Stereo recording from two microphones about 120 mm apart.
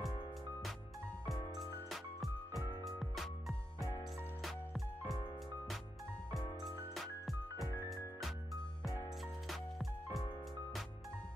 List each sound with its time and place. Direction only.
1.6 s music: centre (ahead or behind)
3.8 s music: 30° left (ahead or behind)
4.4 s music: centre (ahead or behind)
6.9 s music: centre (ahead or behind)